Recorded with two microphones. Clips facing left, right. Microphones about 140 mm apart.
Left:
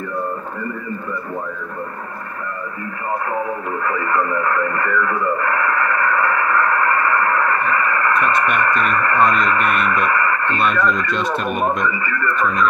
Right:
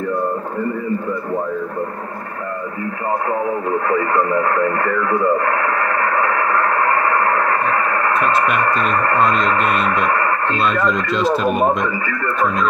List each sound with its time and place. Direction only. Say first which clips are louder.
3.8 s speech: right 1 dB; 30° right (ahead or behind)
7.6 s speech: right 1 dB; 30° right (ahead or behind)
10.8 s speech: right 2 dB; centre (ahead or behind)